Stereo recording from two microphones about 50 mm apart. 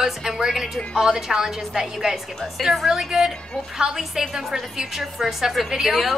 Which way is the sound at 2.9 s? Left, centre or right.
Centre.